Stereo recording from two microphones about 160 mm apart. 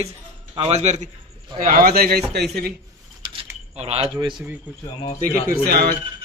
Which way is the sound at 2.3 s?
90° right.